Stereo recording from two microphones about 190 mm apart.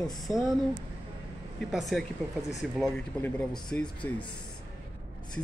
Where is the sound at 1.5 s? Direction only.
Centre (ahead or behind).